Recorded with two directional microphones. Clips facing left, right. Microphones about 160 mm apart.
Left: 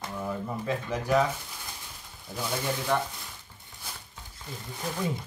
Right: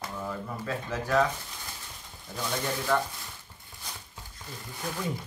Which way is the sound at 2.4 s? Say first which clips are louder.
Left 1 dB; 5° left (ahead or behind).